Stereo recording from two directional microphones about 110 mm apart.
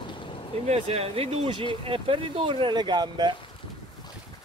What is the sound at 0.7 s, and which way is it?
Speech, 80° right.